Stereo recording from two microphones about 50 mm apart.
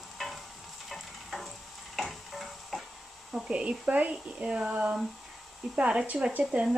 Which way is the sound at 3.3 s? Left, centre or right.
Centre.